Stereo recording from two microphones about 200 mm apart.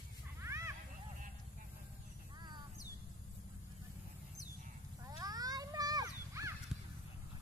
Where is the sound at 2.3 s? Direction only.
20° right (ahead or behind).